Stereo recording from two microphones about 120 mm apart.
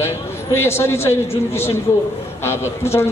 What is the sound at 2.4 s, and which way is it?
Speech, 20° left (ahead or behind).